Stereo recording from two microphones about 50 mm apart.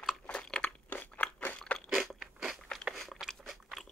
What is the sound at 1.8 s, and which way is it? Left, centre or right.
Crunch, centre.